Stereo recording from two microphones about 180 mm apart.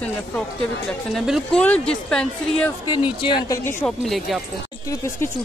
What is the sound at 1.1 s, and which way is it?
Speech, centre (ahead or behind).